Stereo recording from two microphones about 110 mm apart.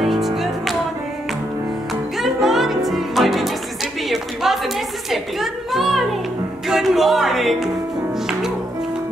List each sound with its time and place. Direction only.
0.0 s music: centre (ahead or behind)
2.1 s music: centre (ahead or behind)
4.1 s a sound: centre (ahead or behind)
6.7 s speech: 5° right (ahead or behind)